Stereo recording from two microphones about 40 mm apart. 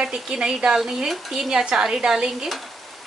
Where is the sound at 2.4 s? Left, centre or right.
Centre.